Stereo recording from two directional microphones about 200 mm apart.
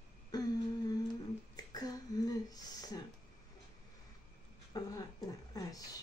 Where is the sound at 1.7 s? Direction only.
20° left (ahead or behind).